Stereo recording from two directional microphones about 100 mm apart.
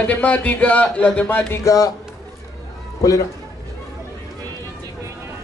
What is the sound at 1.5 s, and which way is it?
Speech, 30° left (ahead or behind).